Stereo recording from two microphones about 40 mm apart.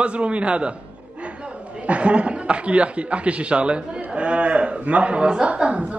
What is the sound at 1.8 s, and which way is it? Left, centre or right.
A man's voice, right.